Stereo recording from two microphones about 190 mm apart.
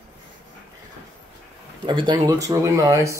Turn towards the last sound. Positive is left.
turn(degrees=-15)  # may be behind; listen again after turning